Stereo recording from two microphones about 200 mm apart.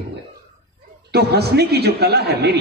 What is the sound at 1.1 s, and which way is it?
A man's voice, 55° right (ahead or behind).